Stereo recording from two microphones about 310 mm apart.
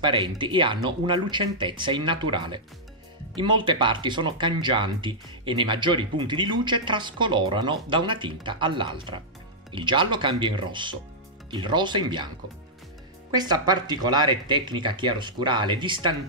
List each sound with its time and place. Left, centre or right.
0.0 s speech: centre
13.3 s speech: centre